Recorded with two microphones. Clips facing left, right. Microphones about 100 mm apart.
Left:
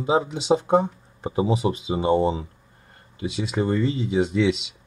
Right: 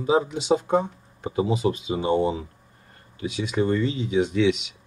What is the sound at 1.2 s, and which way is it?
Speech, 30° left (ahead or behind).